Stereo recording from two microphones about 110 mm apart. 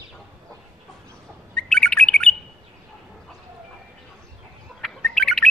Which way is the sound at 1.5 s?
10° left (ahead or behind).